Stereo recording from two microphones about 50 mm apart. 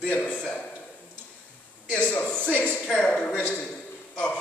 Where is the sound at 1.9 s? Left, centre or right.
Left.